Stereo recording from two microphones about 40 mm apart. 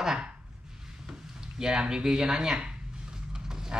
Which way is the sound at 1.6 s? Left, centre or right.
Centre.